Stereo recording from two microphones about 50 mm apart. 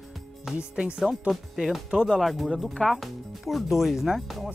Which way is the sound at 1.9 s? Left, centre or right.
Centre.